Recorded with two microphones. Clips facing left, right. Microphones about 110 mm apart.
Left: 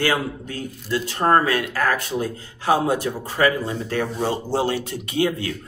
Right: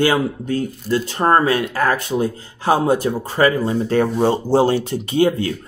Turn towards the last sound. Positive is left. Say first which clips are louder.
# right 6 dB
turn(degrees=-30)  # may be behind; listen again after turning